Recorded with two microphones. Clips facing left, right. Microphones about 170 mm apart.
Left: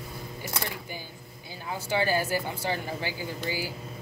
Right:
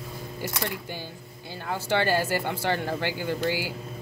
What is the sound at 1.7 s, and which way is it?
Speech, 75° right (ahead or behind).